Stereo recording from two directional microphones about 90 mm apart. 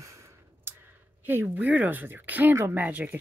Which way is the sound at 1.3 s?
20° right (ahead or behind).